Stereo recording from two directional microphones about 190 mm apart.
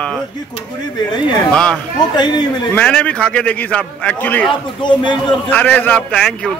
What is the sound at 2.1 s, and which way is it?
Speech, 20° left (ahead or behind).